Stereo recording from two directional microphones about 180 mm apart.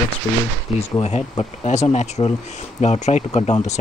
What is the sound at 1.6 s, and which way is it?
Speech, 40° left (ahead or behind).